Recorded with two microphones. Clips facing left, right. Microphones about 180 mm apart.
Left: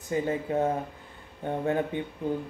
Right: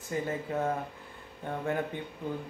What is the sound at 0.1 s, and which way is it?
Speech, 20° left (ahead or behind).